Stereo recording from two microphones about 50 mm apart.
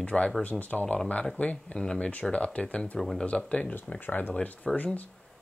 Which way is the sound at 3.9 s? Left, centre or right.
Left.